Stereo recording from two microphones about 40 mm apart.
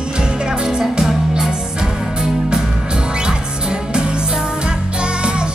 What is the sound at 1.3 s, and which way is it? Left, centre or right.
Music, centre.